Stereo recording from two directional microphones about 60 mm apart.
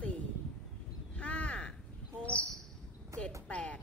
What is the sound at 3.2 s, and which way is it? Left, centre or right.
Cricket, left.